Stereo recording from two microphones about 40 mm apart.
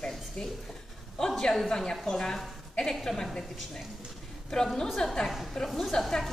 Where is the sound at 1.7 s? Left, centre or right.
Centre.